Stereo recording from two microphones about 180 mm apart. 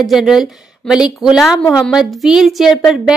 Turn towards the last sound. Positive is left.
turn(degrees=0)  # may be behind; listen again after turning